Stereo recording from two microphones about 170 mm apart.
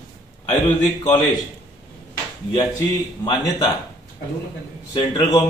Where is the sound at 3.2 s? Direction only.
25° left (ahead or behind).